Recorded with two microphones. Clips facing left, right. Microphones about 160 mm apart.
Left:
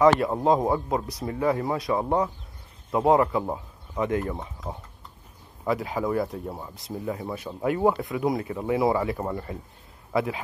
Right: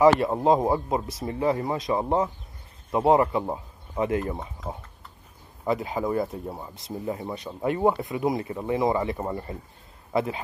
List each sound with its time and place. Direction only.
0.0 s a man's voice: 5° right (ahead or behind)
5.7 s speech: centre (ahead or behind)
9.2 s speech: 10° right (ahead or behind)
10.1 s speech: centre (ahead or behind)